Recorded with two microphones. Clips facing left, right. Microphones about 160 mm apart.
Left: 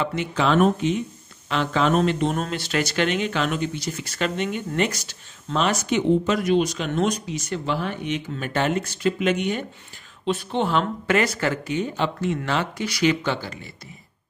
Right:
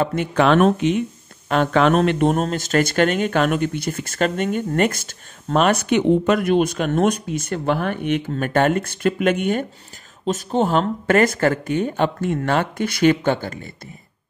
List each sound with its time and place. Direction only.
0.0 s speech: 50° right (ahead or behind); by 1.0 s 70° right (ahead or behind)
1.5 s speech: 55° right (ahead or behind)